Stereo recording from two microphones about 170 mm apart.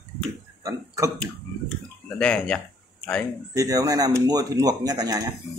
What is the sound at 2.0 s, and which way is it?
Speech, 5° left (ahead or behind).